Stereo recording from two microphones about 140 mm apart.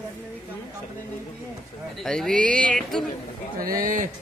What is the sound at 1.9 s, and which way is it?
Speech, centre (ahead or behind).